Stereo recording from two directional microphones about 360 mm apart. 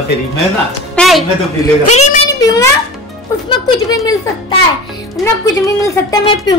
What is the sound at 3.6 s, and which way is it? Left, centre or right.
A woman's voice, centre.